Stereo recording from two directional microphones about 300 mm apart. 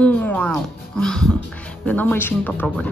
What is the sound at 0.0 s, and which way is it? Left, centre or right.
Speech, centre.